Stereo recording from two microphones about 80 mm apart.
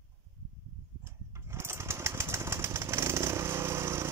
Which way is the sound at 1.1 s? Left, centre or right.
Right.